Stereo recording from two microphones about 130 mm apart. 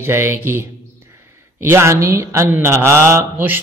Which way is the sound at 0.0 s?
20° right (ahead or behind).